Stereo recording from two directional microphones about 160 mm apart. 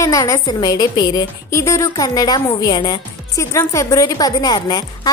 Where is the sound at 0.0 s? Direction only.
20° left (ahead or behind).